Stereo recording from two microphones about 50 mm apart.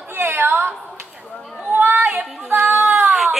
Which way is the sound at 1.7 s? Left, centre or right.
Right.